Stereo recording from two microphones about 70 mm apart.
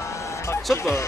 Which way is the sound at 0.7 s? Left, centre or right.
Left.